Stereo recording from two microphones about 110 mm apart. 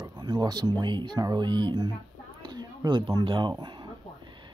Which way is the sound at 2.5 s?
40° right (ahead or behind).